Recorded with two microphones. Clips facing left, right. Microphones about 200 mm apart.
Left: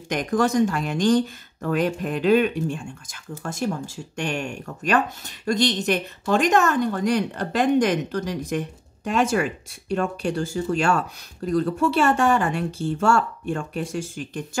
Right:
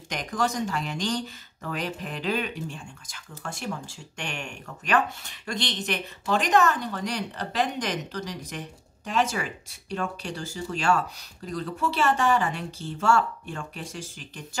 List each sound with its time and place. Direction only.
0.1 s speech: 55° left (ahead or behind)